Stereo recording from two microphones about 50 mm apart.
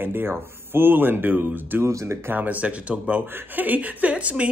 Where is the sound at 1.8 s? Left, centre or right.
Right.